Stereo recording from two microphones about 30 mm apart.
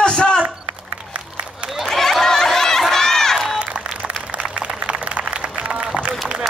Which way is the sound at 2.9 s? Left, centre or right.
Centre.